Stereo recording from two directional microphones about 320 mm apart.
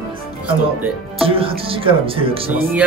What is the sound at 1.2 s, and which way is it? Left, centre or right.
Speech, centre.